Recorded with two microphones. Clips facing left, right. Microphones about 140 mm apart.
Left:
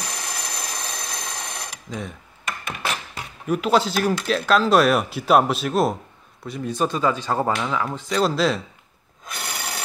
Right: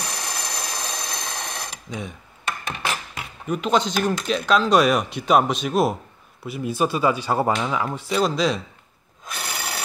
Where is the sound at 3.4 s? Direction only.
5° left (ahead or behind).